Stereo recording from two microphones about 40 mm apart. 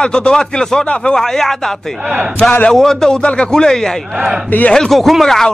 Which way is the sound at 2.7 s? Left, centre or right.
Centre.